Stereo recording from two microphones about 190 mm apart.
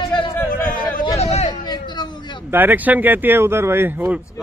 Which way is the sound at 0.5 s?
45° left (ahead or behind).